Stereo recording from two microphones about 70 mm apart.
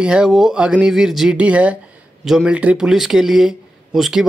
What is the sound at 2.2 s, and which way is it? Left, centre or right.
Speech, centre.